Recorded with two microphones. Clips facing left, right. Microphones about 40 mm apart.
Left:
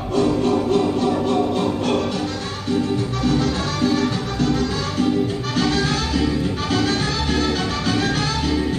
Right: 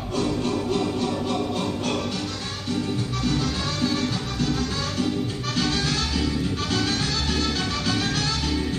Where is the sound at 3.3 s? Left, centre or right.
Left.